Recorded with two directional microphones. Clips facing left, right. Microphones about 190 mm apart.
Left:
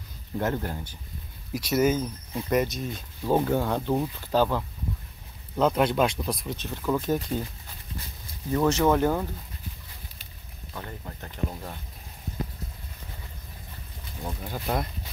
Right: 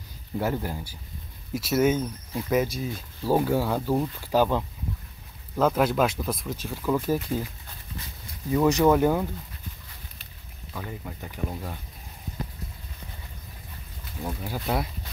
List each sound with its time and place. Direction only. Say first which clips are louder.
0.4 s speech: even; 10° right (ahead or behind)
5.6 s speech: even; 5° right (ahead or behind)
8.5 s speech: right 2 dB; 10° right (ahead or behind)
10.7 s speech: right 2 dB; 5° right (ahead or behind)
14.2 s speech: right 2 dB; 5° right (ahead or behind)